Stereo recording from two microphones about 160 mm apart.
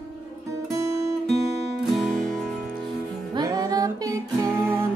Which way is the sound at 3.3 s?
25° right (ahead or behind).